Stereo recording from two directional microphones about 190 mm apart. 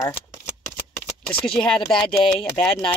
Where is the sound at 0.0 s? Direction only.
15° left (ahead or behind).